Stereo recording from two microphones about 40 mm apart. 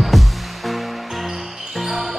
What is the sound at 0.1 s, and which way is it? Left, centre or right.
Music, centre.